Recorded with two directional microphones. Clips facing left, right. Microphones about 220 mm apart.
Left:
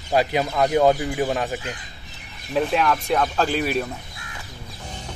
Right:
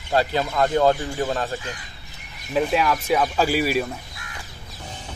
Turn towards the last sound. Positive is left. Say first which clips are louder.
# right 1 dB
turn(degrees=-5)  # may be behind; listen again after turning